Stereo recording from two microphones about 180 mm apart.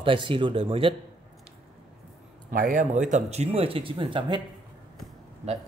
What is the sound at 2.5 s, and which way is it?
A man's voice, 50° right (ahead or behind).